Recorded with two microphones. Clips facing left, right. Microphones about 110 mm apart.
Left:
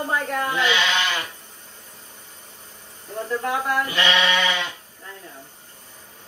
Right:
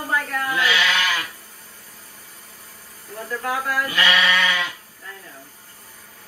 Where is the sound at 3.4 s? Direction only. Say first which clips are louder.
Right 1 dB; 25° left (ahead or behind).